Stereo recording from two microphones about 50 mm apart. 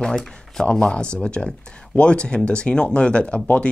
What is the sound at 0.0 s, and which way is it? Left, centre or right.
Speech, centre.